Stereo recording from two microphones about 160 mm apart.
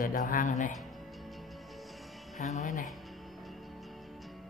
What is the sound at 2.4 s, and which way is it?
Speech, 50° left (ahead or behind).